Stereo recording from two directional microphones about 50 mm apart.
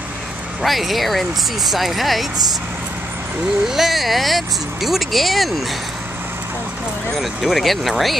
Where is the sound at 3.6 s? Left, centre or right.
Centre.